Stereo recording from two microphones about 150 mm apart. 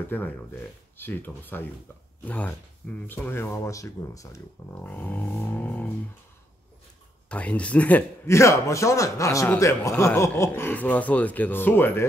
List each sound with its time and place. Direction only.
0.1 s a man's voice: 15° left (ahead or behind)
4.8 s a man's voice: 10° left (ahead or behind)
7.2 s a man's voice: 10° left (ahead or behind)